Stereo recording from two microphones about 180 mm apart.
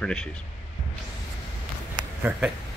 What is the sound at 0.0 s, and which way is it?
Speech, 5° left (ahead or behind).